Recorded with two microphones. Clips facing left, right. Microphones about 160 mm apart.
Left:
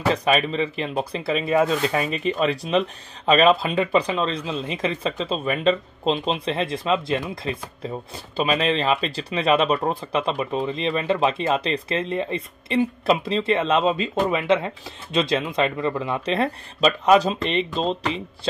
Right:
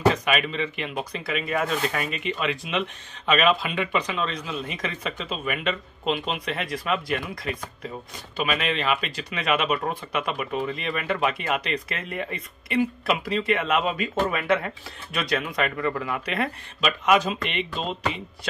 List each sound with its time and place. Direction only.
0.1 s speech: 30° left (ahead or behind)